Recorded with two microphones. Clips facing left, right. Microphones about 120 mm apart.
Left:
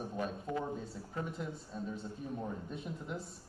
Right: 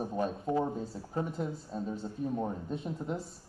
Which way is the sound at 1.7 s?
25° right (ahead or behind).